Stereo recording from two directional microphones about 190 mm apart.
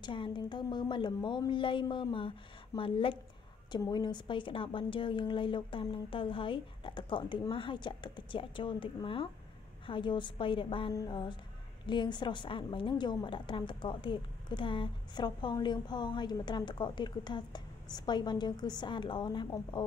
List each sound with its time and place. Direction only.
0.0 s a woman's voice: 25° left (ahead or behind)